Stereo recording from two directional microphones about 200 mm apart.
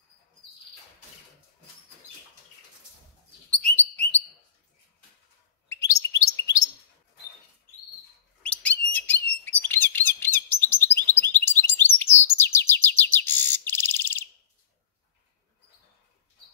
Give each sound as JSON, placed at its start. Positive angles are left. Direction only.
{"t": 3.4, "sound": "bird", "side_deg": 5}
{"t": 5.7, "sound": "chirp", "side_deg": 15}
{"t": 8.4, "sound": "bird", "side_deg": 5}
{"t": 11.1, "sound": "chirp", "side_deg": 10}